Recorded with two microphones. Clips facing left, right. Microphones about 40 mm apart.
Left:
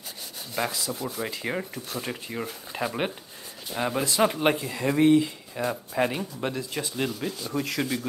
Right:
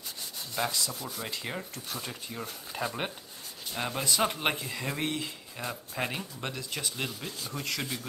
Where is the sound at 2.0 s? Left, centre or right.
Left.